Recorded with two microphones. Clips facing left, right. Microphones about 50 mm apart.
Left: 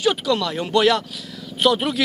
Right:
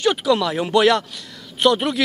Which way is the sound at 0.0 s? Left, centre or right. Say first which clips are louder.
Right 2 dB; centre.